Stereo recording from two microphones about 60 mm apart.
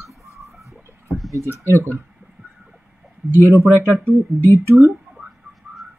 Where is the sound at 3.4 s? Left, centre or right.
Right.